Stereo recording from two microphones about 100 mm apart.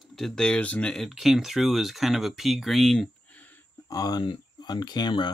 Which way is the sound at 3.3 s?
15° left (ahead or behind).